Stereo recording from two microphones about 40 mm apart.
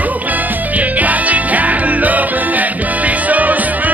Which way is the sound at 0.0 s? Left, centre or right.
Right.